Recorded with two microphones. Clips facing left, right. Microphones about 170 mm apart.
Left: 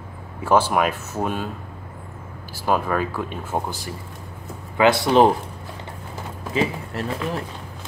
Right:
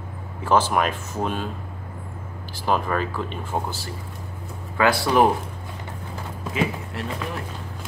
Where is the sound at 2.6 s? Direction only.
5° left (ahead or behind).